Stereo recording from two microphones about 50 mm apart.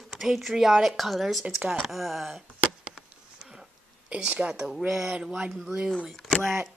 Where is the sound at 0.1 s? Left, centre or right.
Centre.